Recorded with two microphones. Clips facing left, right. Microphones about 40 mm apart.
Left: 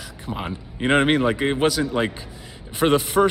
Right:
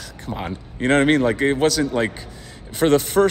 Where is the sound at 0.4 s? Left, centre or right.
Centre.